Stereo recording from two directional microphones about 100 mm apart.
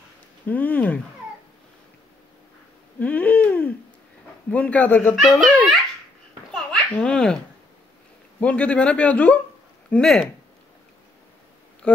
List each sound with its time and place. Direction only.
0.5 s a man's voice: 15° left (ahead or behind)
3.0 s a sound: 15° left (ahead or behind)
4.5 s a man's voice: 15° left (ahead or behind)
5.1 s a child's voice: centre (ahead or behind)
6.5 s babbling: 10° left (ahead or behind)
8.4 s a man's voice: 15° left (ahead or behind)